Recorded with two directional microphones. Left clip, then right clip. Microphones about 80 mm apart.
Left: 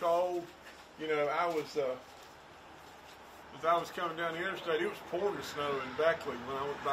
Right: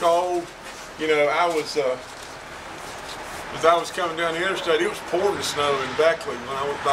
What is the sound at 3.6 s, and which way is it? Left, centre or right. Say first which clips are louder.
Speech: right 12 dB; centre.